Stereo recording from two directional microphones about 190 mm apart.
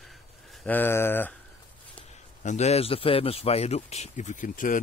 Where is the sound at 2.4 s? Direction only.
40° left (ahead or behind).